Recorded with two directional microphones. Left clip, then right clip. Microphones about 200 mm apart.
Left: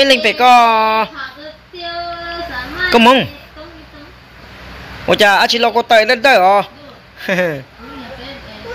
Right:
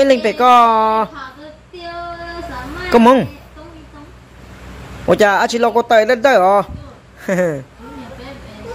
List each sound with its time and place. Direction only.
0.0 s speech: 25° right (ahead or behind)
2.9 s speech: 20° right (ahead or behind)
5.0 s speech: 20° right (ahead or behind)
7.2 s speech: 10° right (ahead or behind)